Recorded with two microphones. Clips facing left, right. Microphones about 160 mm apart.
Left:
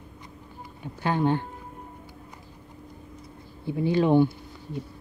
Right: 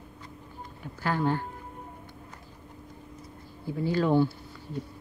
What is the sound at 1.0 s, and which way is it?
Speech, 20° left (ahead or behind).